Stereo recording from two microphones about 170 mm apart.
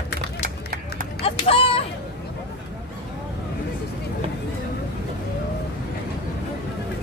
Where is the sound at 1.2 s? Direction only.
35° left (ahead or behind).